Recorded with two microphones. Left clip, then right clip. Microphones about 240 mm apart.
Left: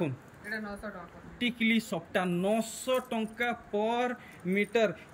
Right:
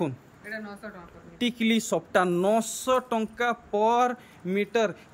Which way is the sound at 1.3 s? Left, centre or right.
Centre.